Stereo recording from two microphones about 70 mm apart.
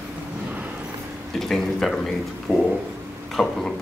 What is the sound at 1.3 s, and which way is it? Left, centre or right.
A man's voice, centre.